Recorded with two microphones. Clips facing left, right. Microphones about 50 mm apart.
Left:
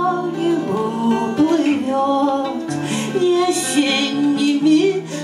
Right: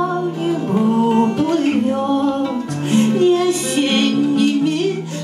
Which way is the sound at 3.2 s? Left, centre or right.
Right.